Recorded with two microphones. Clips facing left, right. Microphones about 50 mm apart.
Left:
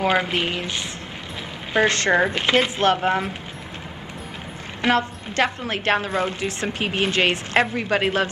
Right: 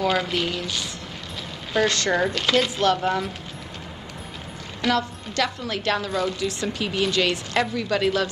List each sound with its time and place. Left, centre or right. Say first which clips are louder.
0.0 s a woman's voice: left 2 dB; left
4.8 s a woman's voice: left 3 dB; left